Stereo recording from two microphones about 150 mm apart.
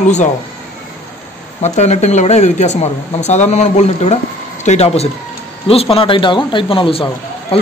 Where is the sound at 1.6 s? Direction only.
50° left (ahead or behind).